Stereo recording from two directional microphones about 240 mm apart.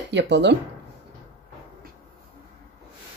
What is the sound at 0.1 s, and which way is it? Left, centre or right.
Speech, right.